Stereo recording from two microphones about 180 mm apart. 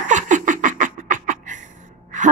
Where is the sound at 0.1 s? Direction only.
45° right (ahead or behind).